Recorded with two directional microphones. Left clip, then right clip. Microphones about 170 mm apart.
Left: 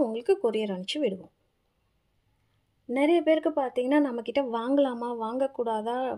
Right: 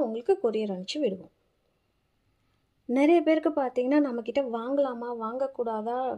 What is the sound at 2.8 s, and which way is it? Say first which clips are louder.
Speech: right 1 dB; 15° right (ahead or behind).